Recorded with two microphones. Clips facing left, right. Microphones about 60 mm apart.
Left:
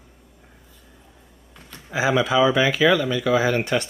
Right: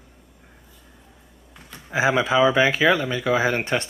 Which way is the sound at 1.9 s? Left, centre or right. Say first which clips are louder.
Even; right.